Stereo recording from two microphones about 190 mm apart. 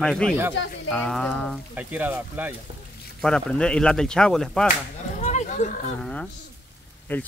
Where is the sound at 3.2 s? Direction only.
5° left (ahead or behind).